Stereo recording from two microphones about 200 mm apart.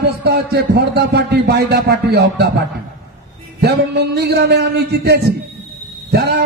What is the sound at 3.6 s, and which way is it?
A man's voice, 55° right (ahead or behind).